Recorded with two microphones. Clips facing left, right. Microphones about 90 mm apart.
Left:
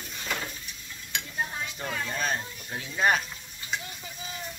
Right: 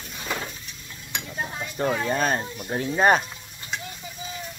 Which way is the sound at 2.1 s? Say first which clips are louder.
Right 7 dB; 50° right (ahead or behind).